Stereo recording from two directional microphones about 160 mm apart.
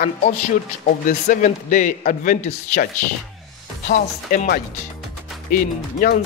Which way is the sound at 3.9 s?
60° left (ahead or behind).